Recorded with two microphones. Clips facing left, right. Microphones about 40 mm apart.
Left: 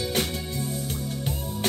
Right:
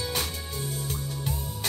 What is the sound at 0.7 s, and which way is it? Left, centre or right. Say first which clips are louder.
Music: left 3 dB; left.